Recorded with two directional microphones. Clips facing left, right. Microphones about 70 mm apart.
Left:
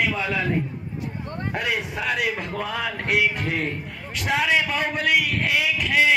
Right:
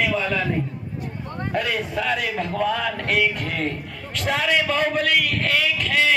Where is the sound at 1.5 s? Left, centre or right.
Centre.